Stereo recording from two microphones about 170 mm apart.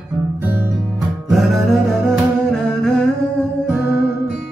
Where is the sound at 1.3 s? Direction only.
Centre (ahead or behind).